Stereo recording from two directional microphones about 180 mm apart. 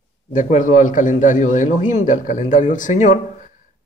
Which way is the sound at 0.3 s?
45° left (ahead or behind).